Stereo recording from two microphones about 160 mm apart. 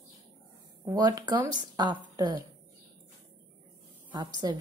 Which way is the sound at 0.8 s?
25° right (ahead or behind).